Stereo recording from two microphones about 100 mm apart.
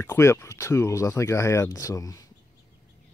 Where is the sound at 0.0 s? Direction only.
25° left (ahead or behind).